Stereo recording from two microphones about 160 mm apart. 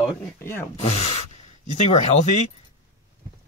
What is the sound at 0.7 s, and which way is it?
Speech, 40° left (ahead or behind).